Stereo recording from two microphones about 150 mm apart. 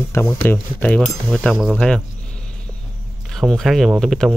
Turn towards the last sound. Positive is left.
turn(degrees=0)  # may be behind; listen again after turning